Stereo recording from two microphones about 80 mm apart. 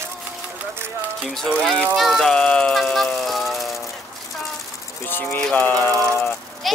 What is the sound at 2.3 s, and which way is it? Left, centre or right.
Music, centre.